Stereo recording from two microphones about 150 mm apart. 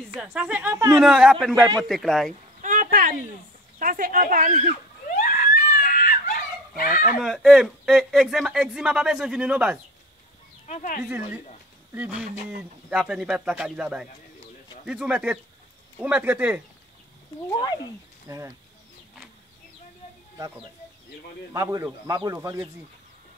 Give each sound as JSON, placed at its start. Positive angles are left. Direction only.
{"t": 0.2, "sound": "speech", "side_deg": -10}
{"t": 2.6, "sound": "a sound", "side_deg": -65}
{"t": 3.8, "sound": "speech", "side_deg": -65}
{"t": 5.1, "sound": "screaming", "side_deg": 60}
{"t": 7.2, "sound": "speech", "side_deg": 0}
{"t": 10.7, "sound": "speech", "side_deg": 60}
{"t": 11.1, "sound": "speech", "side_deg": -10}
{"t": 18.3, "sound": "a man's voice", "side_deg": -20}
{"t": 21.5, "sound": "a man's voice", "side_deg": -25}